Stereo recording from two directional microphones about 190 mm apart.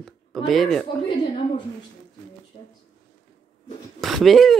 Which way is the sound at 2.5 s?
30° left (ahead or behind).